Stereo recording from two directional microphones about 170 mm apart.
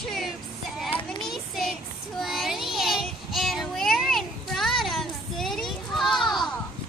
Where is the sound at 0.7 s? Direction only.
10° left (ahead or behind).